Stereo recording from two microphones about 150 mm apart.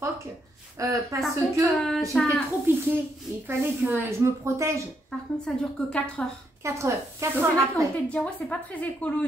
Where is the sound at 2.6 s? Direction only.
15° right (ahead or behind).